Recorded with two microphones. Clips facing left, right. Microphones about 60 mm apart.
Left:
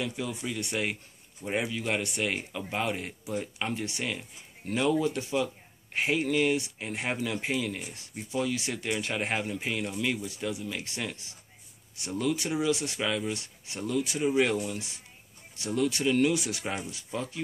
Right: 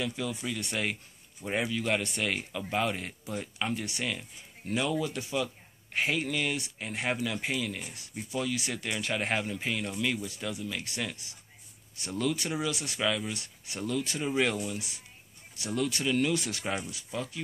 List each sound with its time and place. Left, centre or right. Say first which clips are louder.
0.0 s speech: even; left
14.5 s speech: left 3 dB; left; by 16.7 s centre
16.9 s speech: left 1 dB; left